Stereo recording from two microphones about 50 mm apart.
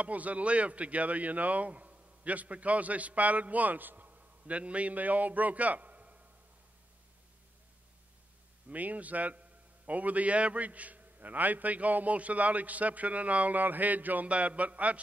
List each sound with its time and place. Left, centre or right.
0.0 s speech: right
8.6 s a man's voice: right